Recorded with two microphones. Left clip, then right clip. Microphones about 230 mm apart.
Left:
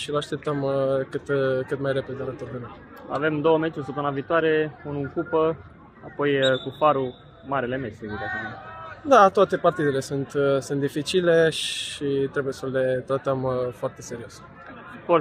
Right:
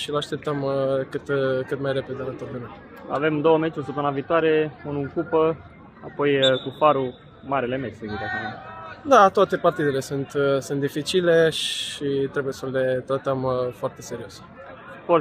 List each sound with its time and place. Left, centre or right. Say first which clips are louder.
0.0 s speech: right 1 dB; centre
8.0 s speech: right 2 dB; right
9.1 s speech: right 1 dB; centre